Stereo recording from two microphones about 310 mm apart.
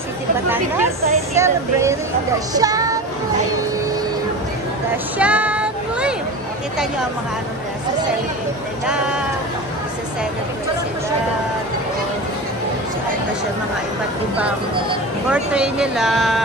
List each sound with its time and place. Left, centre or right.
0.5 s speech: centre
5.2 s child singing: centre
8.8 s speech: centre
15.2 s speech: centre